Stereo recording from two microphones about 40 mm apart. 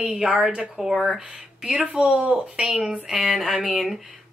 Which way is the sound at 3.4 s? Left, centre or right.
Centre.